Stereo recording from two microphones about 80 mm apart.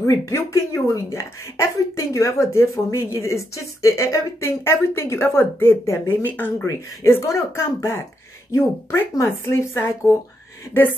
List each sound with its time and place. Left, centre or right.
0.0 s a woman's voice: left
6.6 s a woman's voice: left